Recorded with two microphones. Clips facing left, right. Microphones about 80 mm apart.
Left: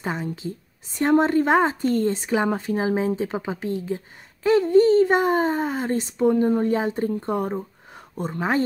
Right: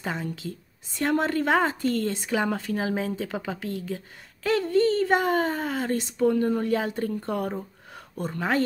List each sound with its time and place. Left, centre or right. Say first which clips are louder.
0.0 s a woman's voice: left 3 dB; left